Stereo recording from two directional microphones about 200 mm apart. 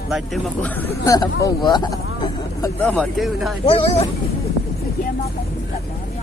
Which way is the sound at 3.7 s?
30° left (ahead or behind).